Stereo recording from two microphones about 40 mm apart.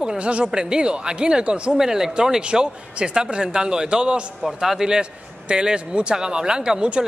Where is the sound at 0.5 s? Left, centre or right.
Right.